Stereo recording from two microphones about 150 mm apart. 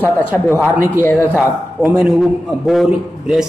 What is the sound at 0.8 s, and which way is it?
Speech, 15° left (ahead or behind).